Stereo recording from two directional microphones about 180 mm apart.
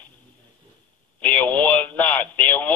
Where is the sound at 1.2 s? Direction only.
10° left (ahead or behind).